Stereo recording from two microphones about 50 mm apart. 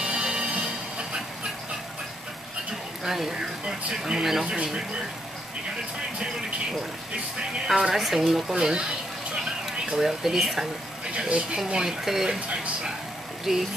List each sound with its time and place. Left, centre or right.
0.0 s music: centre
3.0 s a woman's voice: centre
7.6 s a woman's voice: centre
9.3 s a sound: centre
11.1 s speech: right
11.7 s a woman's voice: centre
13.5 s a woman's voice: centre